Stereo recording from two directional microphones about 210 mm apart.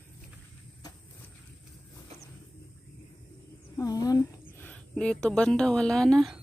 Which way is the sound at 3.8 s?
15° left (ahead or behind).